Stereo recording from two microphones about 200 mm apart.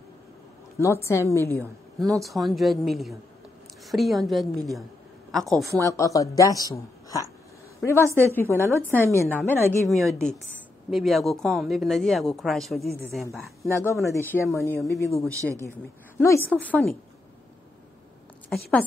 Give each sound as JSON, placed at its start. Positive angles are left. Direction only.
{"t": 0.7, "sound": "speech", "side_deg": 15}
{"t": 5.8, "sound": "a woman's voice", "side_deg": 15}
{"t": 13.7, "sound": "speech", "side_deg": 10}
{"t": 18.5, "sound": "speech", "side_deg": 5}